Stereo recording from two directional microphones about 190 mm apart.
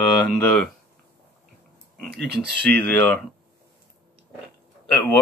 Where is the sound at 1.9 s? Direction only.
5° left (ahead or behind).